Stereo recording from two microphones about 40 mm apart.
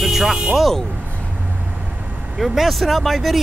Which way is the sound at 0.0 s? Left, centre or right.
Centre.